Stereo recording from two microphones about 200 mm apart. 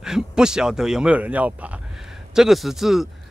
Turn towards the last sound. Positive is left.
turn(degrees=0)  # may be behind; listen again after turning